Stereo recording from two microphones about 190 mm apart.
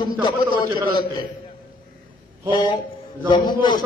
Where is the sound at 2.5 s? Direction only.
25° left (ahead or behind).